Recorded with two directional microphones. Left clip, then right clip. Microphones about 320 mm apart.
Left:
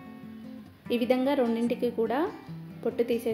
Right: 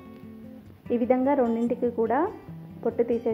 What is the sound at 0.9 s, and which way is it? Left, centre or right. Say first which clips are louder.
A woman's voice: right 3 dB; centre.